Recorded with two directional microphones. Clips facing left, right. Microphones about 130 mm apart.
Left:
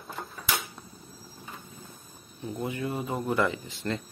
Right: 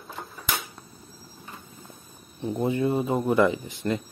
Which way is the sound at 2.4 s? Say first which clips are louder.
Right 7 dB; 25° right (ahead or behind).